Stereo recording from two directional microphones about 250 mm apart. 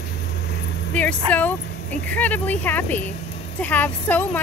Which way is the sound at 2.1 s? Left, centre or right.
Centre.